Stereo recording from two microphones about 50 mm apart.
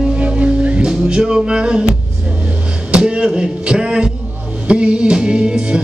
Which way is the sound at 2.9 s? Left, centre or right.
Centre.